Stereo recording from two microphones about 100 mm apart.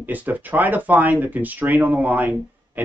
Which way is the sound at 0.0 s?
15° right (ahead or behind).